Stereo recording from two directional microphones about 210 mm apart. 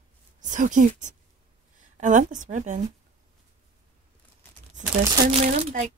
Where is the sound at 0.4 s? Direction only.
35° right (ahead or behind).